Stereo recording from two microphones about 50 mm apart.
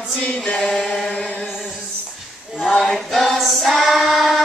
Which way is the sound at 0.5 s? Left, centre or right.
Centre.